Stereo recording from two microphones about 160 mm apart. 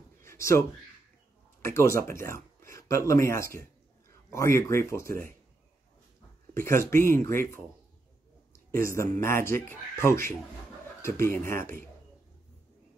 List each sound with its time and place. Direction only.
0.2 s a sound: 15° left (ahead or behind)
1.6 s speech: 15° left (ahead or behind)
5.0 s speech: 60° right (ahead or behind)
6.5 s speech: 15° left (ahead or behind)
8.5 s speech: 20° left (ahead or behind)